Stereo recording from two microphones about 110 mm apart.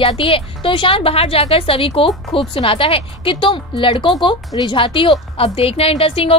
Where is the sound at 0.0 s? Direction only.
55° left (ahead or behind).